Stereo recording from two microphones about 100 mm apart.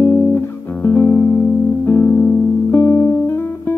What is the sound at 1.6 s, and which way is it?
Music, 20° left (ahead or behind).